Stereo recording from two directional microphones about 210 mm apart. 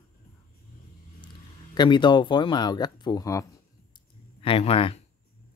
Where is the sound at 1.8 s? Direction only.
20° left (ahead or behind).